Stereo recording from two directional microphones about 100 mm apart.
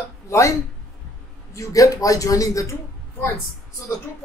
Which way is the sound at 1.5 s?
35° left (ahead or behind).